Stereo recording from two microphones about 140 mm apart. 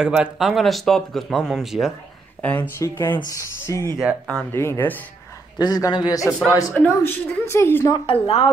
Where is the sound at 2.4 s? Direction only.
10° left (ahead or behind).